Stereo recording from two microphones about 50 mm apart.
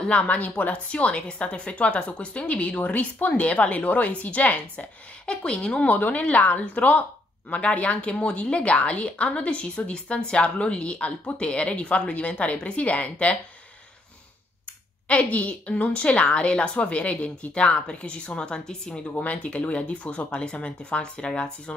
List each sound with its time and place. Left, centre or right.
0.1 s a woman's voice: left
5.2 s a woman's voice: centre
5.9 s a woman's voice: left
15.0 s a woman's voice: left
19.1 s a woman's voice: left